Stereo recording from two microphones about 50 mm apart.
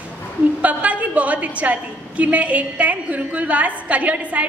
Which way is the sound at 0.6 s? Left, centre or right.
Right.